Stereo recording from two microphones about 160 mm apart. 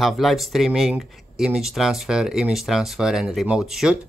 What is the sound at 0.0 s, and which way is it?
Speech, centre (ahead or behind).